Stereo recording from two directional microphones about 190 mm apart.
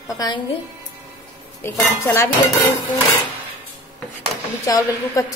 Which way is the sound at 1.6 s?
15° left (ahead or behind).